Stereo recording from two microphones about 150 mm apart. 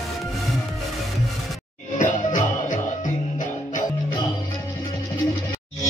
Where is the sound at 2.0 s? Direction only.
55° left (ahead or behind).